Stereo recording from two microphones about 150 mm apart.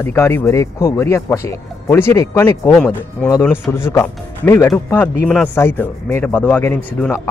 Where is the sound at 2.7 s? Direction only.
5° left (ahead or behind).